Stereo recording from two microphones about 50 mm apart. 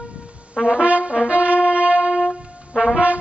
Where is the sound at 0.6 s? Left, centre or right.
Right.